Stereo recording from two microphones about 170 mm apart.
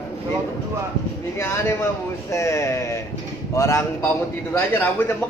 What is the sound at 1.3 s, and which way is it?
A man's voice, 15° left (ahead or behind).